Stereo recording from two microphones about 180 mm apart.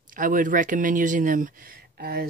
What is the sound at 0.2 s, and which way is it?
Speech, 50° right (ahead or behind).